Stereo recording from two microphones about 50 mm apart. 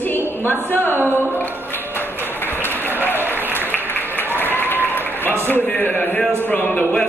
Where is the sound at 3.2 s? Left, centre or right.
Right.